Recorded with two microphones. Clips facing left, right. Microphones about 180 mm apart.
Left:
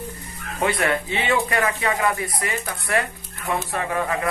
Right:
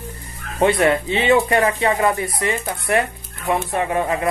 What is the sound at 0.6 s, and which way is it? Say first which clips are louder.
Speech: right 6 dB; 25° right (ahead or behind).